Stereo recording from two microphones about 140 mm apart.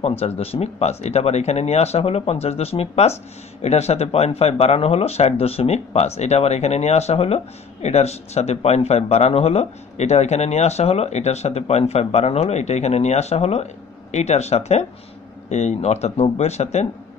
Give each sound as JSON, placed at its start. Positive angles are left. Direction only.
{"t": 0.0, "sound": "speech", "side_deg": 45}